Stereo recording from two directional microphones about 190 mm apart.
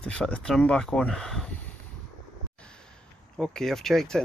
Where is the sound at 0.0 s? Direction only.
5° left (ahead or behind).